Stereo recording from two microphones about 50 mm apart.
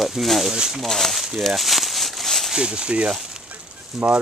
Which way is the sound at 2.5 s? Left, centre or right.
Centre.